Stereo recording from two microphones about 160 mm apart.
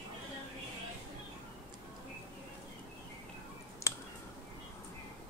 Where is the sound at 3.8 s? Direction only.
20° left (ahead or behind).